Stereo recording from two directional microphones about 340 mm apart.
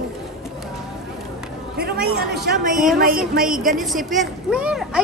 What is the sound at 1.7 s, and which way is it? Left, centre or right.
A woman's voice, right.